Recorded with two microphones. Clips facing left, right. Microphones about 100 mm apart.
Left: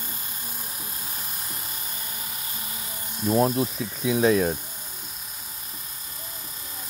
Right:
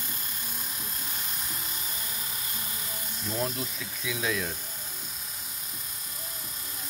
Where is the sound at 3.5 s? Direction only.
35° left (ahead or behind).